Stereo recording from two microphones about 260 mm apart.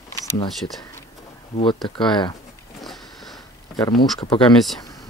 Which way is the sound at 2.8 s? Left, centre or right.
Centre.